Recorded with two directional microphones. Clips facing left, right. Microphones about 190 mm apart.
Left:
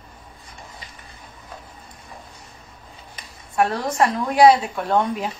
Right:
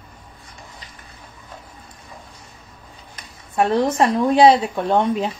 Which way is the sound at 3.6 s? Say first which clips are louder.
Right 3 dB; 25° right (ahead or behind).